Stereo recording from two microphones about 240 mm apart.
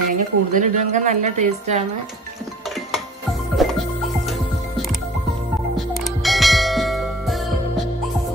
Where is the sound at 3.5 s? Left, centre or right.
Centre.